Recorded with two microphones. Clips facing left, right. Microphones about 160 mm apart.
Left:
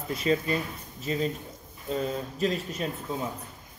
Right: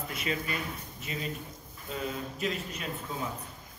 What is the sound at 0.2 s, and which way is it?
Speech, 40° left (ahead or behind).